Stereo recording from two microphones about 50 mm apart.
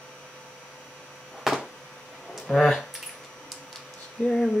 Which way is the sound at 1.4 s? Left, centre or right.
Centre.